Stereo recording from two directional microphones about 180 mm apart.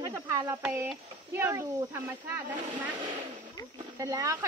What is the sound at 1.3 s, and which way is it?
Speech, 10° right (ahead or behind).